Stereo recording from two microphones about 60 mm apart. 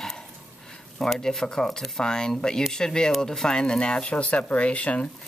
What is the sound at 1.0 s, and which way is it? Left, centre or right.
Speech, centre.